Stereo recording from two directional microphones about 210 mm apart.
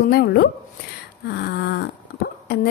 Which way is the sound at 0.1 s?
50° left (ahead or behind).